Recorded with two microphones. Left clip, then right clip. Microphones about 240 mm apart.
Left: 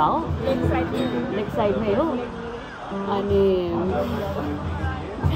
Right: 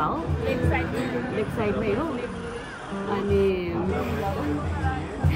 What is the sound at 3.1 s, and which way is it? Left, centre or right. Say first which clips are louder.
Speech: left 3 dB; centre.